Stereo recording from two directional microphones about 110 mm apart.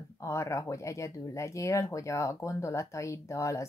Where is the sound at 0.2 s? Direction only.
25° left (ahead or behind).